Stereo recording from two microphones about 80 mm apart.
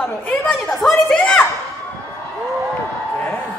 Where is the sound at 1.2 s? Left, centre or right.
Centre.